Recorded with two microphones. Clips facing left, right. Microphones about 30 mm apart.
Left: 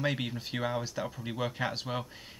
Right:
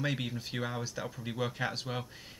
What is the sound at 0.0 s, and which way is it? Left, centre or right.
Speech, centre.